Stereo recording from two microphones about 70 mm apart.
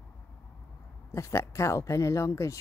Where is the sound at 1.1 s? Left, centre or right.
Left.